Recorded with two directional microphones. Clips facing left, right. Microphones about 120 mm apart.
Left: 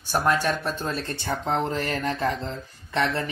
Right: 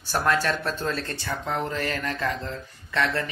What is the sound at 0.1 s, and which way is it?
Speech, 15° left (ahead or behind).